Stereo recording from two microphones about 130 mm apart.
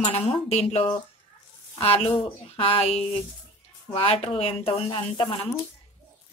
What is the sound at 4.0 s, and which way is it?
A woman's voice, 45° left (ahead or behind).